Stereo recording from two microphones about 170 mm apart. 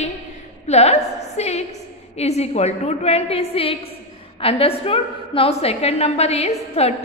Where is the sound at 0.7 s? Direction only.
40° left (ahead or behind).